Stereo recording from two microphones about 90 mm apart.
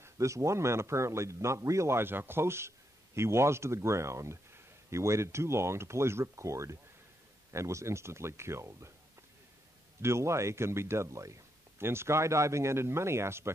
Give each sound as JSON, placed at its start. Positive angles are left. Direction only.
{"t": 0.0, "sound": "speech", "side_deg": -35}
{"t": 10.0, "sound": "speech", "side_deg": -30}